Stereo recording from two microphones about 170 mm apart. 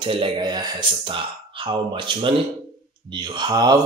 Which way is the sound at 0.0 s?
30° right (ahead or behind).